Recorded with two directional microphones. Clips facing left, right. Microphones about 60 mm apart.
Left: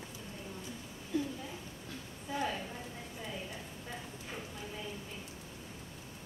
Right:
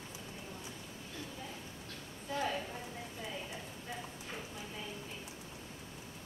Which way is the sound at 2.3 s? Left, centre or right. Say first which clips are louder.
Even; centre.